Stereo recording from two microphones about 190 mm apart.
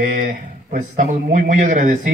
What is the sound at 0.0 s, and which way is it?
A man's voice, 40° right (ahead or behind).